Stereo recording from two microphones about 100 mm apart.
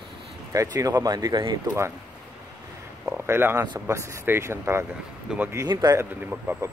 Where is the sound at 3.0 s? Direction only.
20° right (ahead or behind).